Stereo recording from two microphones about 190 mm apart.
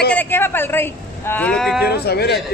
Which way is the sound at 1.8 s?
55° left (ahead or behind).